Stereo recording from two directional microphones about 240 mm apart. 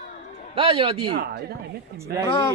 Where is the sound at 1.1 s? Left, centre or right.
Right.